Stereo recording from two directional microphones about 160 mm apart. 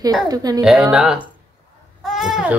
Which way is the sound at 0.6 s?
5° right (ahead or behind).